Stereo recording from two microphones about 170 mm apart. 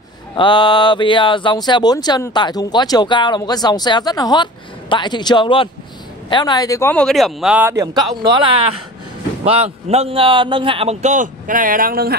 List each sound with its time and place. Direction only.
0.4 s speech: 30° left (ahead or behind); by 7.7 s 5° right (ahead or behind)
7.7 s a man's voice: 25° right (ahead or behind); by 12.2 s 60° right (ahead or behind)